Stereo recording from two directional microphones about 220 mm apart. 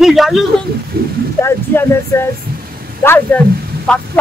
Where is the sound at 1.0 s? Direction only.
45° right (ahead or behind).